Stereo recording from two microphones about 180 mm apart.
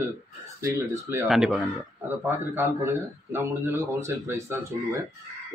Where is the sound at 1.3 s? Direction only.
Centre (ahead or behind).